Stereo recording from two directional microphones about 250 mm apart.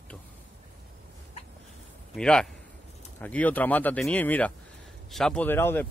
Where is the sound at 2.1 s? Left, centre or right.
Centre.